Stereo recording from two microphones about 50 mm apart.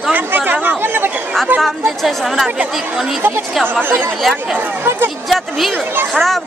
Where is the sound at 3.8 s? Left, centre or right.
Right.